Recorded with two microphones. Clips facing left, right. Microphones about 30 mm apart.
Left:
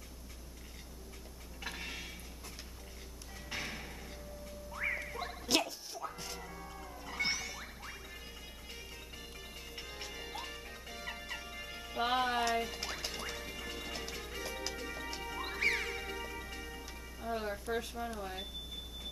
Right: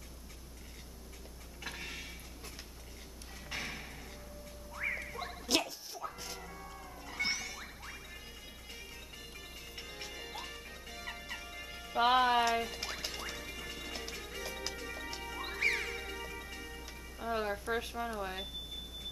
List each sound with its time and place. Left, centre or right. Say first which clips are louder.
1.6 s a sound: left 1 dB; centre
3.4 s music: even; centre
9.4 s music: even; centre
12.0 s music: right 5 dB; centre
17.2 s music: right 3 dB; centre
17.7 s speech: right 1 dB; centre